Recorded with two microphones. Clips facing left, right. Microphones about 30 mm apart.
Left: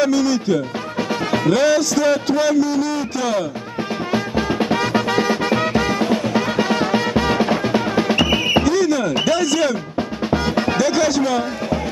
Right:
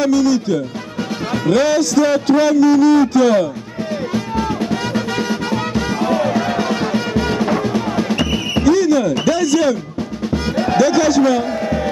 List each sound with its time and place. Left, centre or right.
0.0 s a man's voice: centre
4.1 s music: left
5.8 s music: centre
6.9 s music: left
8.6 s speech: centre
10.3 s music: left
10.7 s speech: centre